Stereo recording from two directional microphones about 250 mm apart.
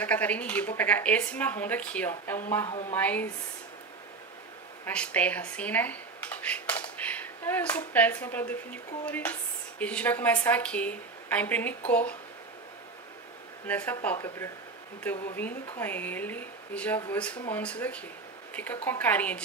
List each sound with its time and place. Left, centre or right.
0.0 s a woman's voice: centre
4.8 s a woman's voice: centre
13.7 s a woman's voice: centre